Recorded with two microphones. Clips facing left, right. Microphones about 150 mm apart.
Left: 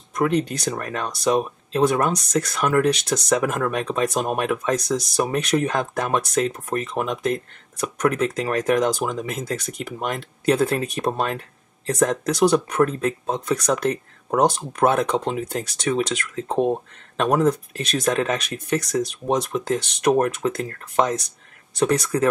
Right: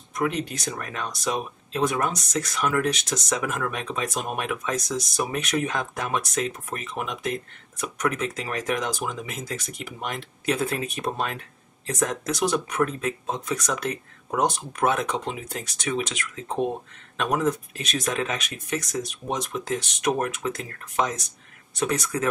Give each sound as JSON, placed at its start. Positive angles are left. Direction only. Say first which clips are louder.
{"t": 0.2, "sound": "speech", "louder": "left 6 dB", "side_deg": 40}
{"t": 2.8, "sound": "speech", "louder": "left 6 dB", "side_deg": 35}
{"t": 3.3, "sound": "speech", "louder": "left 7 dB", "side_deg": 50}
{"t": 3.5, "sound": "speech", "louder": "left 6 dB", "side_deg": 40}